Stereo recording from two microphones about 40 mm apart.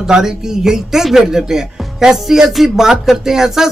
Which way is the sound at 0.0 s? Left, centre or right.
Centre.